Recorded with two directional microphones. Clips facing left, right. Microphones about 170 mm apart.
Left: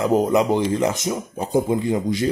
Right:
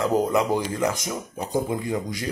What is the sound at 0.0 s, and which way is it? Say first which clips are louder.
Speech: left 4 dB; 20° left (ahead or behind).